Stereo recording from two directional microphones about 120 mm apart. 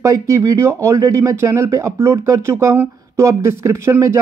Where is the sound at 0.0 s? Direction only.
25° right (ahead or behind).